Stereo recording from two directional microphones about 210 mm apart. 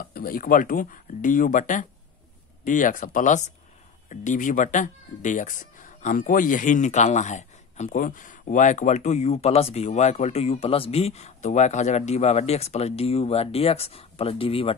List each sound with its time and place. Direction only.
0.1 s speech: 45° left (ahead or behind); by 14.8 s 25° left (ahead or behind)